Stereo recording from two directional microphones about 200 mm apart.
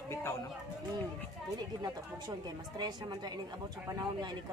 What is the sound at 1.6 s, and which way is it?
Speech, 20° right (ahead or behind).